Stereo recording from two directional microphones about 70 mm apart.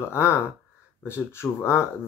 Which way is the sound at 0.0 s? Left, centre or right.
Left.